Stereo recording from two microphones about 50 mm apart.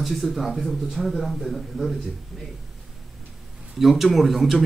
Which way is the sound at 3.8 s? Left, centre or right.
Centre.